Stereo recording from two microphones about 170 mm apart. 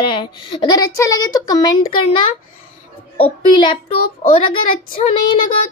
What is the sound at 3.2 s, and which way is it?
Speech, 30° left (ahead or behind).